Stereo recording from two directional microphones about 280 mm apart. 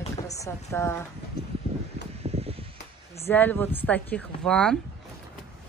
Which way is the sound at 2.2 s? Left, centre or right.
Right.